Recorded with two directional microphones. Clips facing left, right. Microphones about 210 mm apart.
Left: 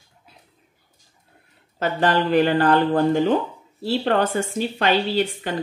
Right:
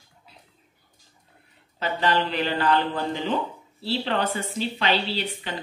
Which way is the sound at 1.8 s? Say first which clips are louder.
Left 4 dB; 50° left (ahead or behind).